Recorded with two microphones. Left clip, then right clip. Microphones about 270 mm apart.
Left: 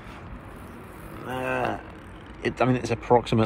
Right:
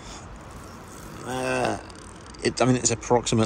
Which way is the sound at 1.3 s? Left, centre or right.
Centre.